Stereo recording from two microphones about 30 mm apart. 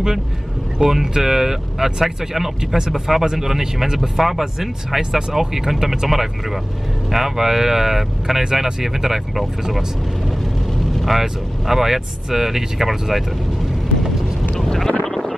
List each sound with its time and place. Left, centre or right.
0.7 s speech: centre
4.2 s speech: centre
11.1 s speech: centre
14.6 s vehicle: centre
15.0 s a sound: centre